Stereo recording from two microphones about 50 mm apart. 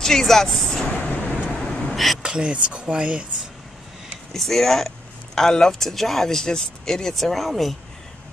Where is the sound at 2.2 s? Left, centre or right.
Centre.